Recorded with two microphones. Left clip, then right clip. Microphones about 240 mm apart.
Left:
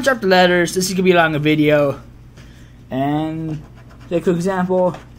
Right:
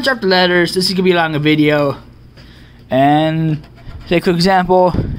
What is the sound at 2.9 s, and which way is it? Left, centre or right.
Speech, right.